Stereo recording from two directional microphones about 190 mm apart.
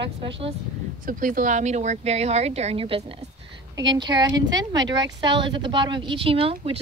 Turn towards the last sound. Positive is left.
turn(degrees=-30)  # may be behind; listen again after turning